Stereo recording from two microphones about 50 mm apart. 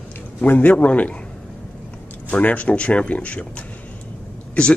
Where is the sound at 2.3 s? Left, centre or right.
Left.